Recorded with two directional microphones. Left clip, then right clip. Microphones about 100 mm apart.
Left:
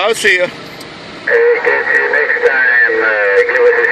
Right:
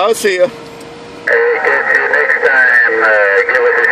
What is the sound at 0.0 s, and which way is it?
Speech, 35° right (ahead or behind).